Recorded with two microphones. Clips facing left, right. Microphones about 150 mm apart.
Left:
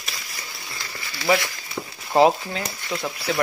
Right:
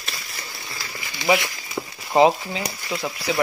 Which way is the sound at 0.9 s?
15° right (ahead or behind).